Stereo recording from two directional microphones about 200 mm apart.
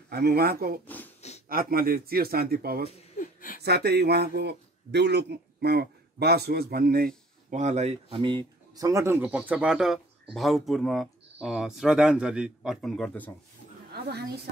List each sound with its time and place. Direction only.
0.1 s a man's voice: 50° right (ahead or behind)
0.8 s a sound: 10° left (ahead or behind)
1.5 s a man's voice: 45° right (ahead or behind)
3.2 s a sound: 45° left (ahead or behind)
3.6 s a man's voice: 55° right (ahead or behind)
7.5 s speech: 35° right (ahead or behind); by 13.3 s 5° left (ahead or behind)